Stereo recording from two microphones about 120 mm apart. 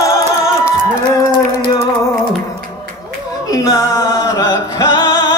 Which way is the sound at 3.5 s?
25° left (ahead or behind).